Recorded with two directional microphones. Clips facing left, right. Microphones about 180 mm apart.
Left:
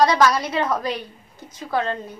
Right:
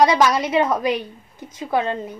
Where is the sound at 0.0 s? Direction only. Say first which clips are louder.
Right 1 dB; 20° right (ahead or behind).